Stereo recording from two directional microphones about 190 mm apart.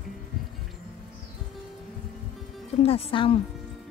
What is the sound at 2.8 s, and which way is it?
Speech, 30° left (ahead or behind).